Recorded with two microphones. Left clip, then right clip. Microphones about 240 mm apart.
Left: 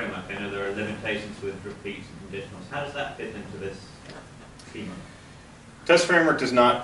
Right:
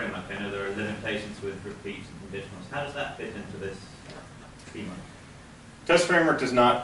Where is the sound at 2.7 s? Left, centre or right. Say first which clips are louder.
Left 1 dB; centre.